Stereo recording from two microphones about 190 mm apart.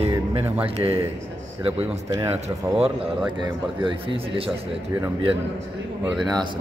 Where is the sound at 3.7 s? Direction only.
25° right (ahead or behind).